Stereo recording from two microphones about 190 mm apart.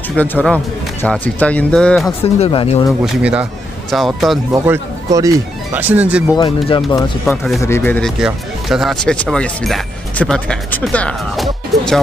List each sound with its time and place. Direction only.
0.1 s speech: 10° left (ahead or behind)
2.2 s speech: 30° left (ahead or behind)
3.2 s speech: 5° right (ahead or behind)
4.7 s speech: 20° right (ahead or behind)
6.3 s speech: 25° left (ahead or behind)
7.2 s speech: centre (ahead or behind)
7.6 s speech: 10° left (ahead or behind)
8.2 s speech: 5° right (ahead or behind)